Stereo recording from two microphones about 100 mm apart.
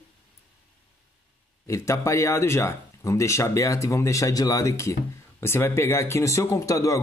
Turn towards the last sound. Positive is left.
turn(degrees=35)  # may be behind; listen again after turning